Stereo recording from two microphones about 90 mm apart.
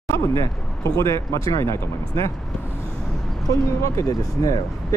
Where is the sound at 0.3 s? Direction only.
35° left (ahead or behind).